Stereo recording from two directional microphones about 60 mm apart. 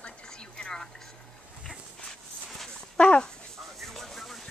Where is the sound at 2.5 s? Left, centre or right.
Centre.